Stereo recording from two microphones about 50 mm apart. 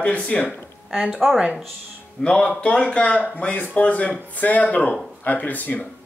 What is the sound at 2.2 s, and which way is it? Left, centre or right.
Speech, centre.